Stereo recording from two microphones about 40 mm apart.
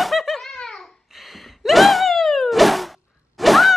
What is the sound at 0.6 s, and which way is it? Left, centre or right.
Babbling, centre.